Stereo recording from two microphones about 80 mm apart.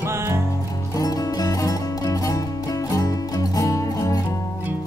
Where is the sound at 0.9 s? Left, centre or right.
Left.